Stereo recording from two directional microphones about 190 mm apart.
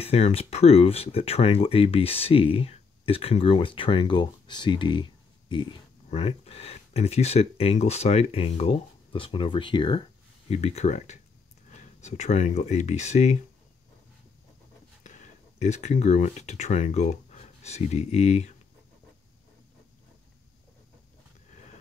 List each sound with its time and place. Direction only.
0.0 s speech: 35° left (ahead or behind)
15.0 s speech: 40° left (ahead or behind)